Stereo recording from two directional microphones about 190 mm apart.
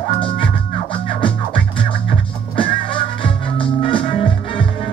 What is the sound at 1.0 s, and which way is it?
Music, 30° left (ahead or behind).